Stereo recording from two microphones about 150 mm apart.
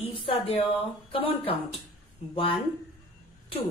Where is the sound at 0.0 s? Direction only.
35° left (ahead or behind).